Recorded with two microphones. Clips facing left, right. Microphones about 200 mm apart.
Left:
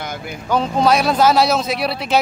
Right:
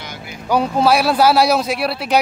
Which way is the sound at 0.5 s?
10° right (ahead or behind).